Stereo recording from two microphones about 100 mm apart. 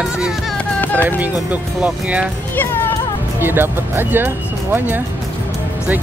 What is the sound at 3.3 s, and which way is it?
Speech, 20° right (ahead or behind).